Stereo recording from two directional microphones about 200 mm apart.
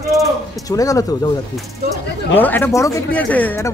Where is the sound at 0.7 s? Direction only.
15° left (ahead or behind).